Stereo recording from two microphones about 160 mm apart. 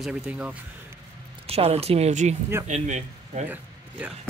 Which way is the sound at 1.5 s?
40° right (ahead or behind).